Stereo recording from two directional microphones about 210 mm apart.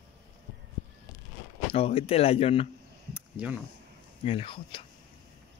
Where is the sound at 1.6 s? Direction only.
25° left (ahead or behind).